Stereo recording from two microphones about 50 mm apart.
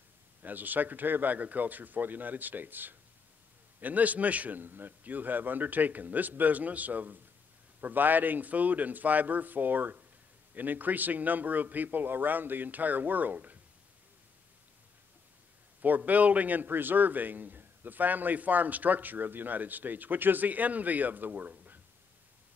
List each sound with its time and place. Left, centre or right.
0.4 s a man's voice: right
16.1 s a man's voice: right